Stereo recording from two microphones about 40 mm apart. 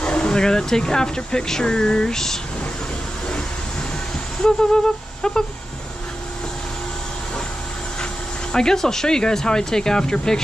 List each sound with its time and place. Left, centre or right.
0.0 s speech: left
4.4 s a sound: centre
8.0 s speech: centre